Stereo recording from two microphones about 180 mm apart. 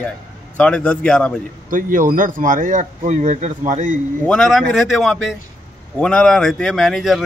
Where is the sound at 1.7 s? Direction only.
50° right (ahead or behind).